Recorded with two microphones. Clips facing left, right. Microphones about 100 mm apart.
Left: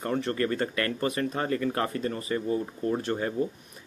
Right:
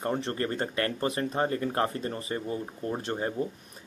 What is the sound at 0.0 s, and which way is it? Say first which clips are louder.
A man's voice: left 2 dB; 30° right (ahead or behind).